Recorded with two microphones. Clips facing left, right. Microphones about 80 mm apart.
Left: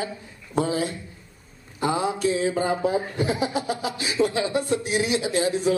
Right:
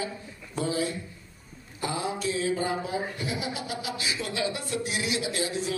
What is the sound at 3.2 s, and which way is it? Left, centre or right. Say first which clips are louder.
Speech: left 8 dB; left.